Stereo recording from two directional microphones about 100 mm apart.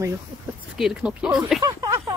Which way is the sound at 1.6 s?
35° right (ahead or behind).